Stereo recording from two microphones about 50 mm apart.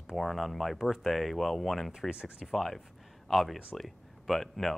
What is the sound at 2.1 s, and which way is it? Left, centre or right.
Speech, centre.